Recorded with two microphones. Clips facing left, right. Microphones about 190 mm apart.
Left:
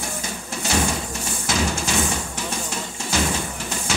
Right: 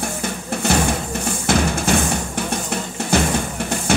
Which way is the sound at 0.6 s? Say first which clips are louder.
Right 4 dB; 60° right (ahead or behind).